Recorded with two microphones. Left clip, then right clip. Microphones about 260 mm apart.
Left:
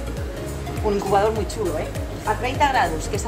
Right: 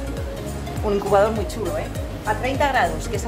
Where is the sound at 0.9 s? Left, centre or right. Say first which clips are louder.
Even; centre.